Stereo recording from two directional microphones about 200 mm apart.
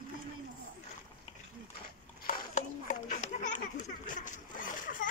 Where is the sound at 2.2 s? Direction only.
40° left (ahead or behind).